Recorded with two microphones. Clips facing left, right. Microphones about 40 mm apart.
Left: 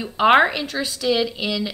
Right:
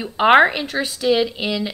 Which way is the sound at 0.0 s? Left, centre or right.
Centre.